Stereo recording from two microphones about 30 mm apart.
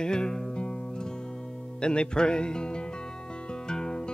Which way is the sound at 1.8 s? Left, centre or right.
Left.